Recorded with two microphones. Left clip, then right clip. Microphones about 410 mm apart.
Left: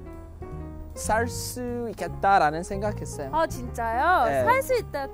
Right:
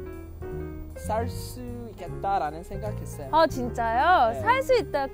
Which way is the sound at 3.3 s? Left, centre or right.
Right.